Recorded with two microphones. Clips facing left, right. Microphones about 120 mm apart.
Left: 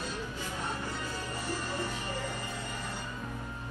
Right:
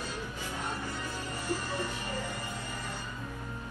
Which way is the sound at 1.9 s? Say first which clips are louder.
Even; 15° right (ahead or behind).